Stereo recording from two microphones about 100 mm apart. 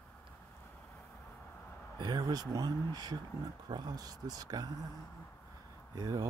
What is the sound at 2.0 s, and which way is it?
Speech, 40° right (ahead or behind).